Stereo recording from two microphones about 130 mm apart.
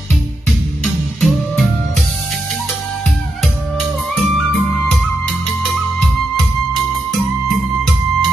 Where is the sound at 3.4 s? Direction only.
Centre (ahead or behind).